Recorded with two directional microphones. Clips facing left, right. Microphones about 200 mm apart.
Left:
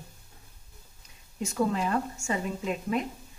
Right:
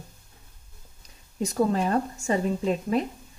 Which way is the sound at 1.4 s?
35° right (ahead or behind).